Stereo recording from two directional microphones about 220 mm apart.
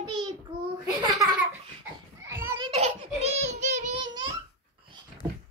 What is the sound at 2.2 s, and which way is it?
Children playing, 10° right (ahead or behind).